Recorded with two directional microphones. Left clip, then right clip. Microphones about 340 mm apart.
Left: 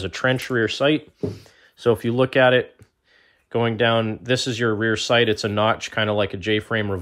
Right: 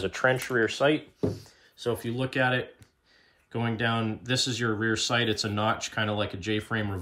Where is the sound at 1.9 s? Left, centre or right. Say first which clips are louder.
Left 11 dB; centre.